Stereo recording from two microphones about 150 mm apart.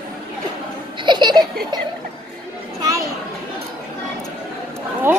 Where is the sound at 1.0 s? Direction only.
30° right (ahead or behind).